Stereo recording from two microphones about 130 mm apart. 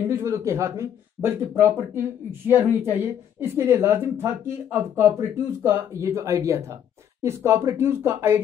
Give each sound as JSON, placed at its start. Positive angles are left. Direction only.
{"t": 0.1, "sound": "speech", "side_deg": -20}